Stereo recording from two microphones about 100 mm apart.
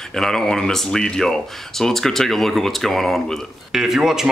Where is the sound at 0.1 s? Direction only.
5° left (ahead or behind).